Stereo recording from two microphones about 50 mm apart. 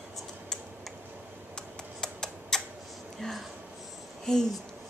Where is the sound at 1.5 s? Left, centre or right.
Centre.